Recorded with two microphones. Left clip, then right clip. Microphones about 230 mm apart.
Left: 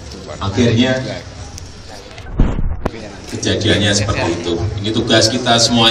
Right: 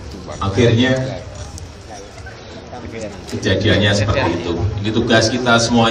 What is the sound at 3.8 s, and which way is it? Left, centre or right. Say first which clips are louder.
Speech: even; right.